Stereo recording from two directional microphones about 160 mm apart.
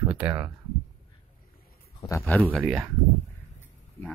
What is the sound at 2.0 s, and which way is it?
Speech, 15° left (ahead or behind).